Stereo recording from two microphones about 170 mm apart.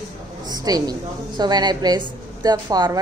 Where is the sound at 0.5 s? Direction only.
25° right (ahead or behind).